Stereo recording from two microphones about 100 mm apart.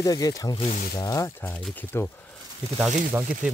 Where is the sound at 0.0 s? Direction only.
35° left (ahead or behind).